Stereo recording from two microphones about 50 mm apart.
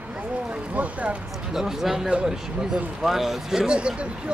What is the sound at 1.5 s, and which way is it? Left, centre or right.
Speech, centre.